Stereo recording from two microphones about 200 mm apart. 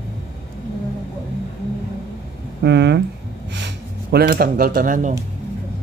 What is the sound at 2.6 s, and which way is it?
Speech, 60° right (ahead or behind).